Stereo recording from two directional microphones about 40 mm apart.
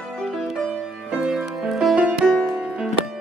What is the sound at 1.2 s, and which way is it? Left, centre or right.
Music, centre.